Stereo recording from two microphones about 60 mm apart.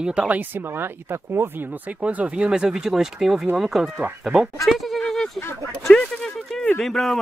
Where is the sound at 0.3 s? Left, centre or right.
Right; by 4.5 s centre.